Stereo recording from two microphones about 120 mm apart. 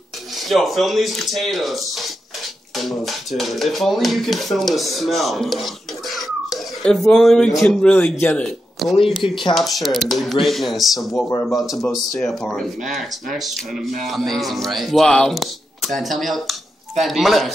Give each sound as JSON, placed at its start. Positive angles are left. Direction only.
{"t": 0.5, "sound": "speech", "side_deg": 0}
{"t": 9.5, "sound": "speech", "side_deg": 0}
{"t": 14.0, "sound": "speech", "side_deg": 0}